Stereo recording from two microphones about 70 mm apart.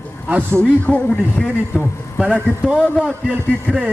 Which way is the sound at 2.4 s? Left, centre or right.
Centre.